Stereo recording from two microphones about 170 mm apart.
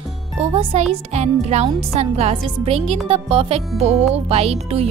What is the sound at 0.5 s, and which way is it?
Speech, 35° right (ahead or behind).